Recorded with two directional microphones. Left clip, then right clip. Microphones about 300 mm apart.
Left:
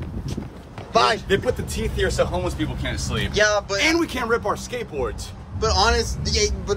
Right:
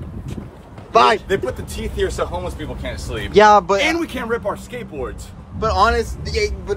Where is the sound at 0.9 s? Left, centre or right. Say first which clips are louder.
Right 5 dB; right.